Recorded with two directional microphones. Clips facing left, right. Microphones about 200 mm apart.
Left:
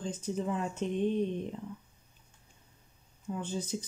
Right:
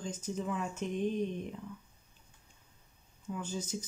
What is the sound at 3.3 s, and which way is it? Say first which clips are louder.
Speech: left 3 dB; 35° left (ahead or behind).